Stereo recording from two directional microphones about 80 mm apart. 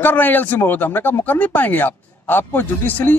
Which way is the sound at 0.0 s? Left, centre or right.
Left.